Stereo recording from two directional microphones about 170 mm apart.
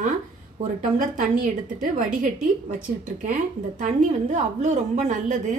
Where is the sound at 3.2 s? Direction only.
50° right (ahead or behind).